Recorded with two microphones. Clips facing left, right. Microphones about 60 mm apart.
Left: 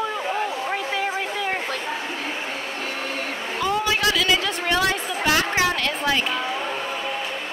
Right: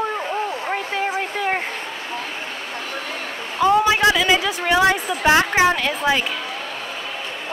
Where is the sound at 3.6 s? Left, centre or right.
Right.